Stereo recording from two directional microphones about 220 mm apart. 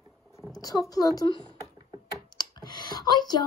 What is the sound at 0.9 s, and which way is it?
Speech, 15° left (ahead or behind).